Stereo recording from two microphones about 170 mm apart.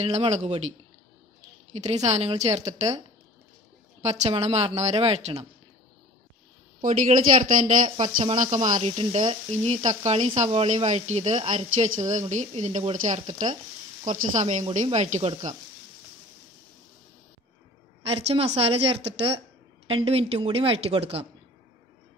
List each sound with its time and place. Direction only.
0.0 s speech: 40° right (ahead or behind)
1.8 s speech: 40° right (ahead or behind)
4.0 s a woman's voice: 40° right (ahead or behind)
6.8 s speech: 45° right (ahead or behind)
18.0 s speech: 35° right (ahead or behind)